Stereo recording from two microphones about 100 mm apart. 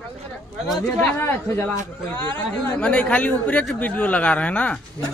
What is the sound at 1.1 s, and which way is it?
Speech, 20° left (ahead or behind).